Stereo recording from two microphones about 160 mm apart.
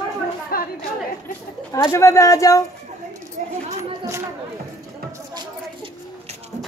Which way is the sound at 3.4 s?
55° right (ahead or behind).